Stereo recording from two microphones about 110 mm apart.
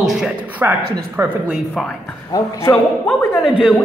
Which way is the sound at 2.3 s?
25° left (ahead or behind).